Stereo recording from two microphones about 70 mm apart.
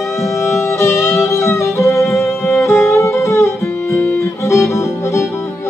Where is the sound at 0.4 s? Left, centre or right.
Left.